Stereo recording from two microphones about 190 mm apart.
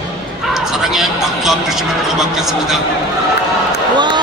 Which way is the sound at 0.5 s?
Centre (ahead or behind).